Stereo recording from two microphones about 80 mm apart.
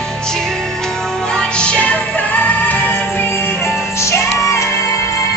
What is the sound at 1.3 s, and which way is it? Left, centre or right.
Music, centre.